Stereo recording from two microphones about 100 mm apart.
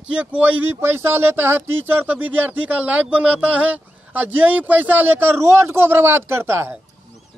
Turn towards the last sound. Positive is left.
turn(degrees=-25)  # may be behind; listen again after turning